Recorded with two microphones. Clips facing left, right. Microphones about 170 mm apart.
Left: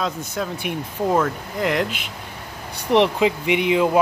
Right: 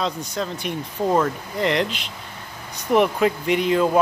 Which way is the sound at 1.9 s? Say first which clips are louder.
Left 1 dB; 55° left (ahead or behind).